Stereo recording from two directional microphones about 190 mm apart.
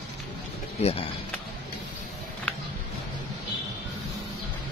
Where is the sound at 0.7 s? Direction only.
35° left (ahead or behind).